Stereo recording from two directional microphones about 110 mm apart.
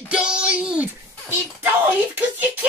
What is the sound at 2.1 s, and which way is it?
Speech, 15° right (ahead or behind).